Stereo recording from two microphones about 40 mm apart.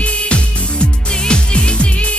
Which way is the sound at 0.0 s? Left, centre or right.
Left.